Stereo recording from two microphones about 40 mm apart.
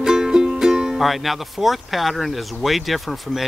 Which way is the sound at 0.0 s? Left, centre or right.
Centre.